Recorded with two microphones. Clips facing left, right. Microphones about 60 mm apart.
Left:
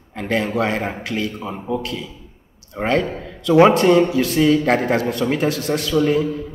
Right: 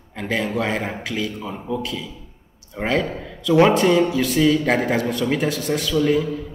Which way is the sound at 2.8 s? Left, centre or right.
Centre.